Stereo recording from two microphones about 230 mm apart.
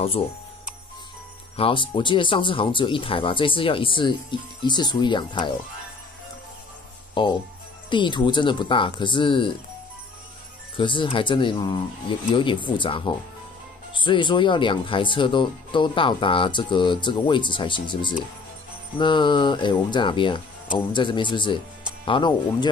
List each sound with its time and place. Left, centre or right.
1.6 s speech: left
7.9 s speech: left
10.8 s speech: left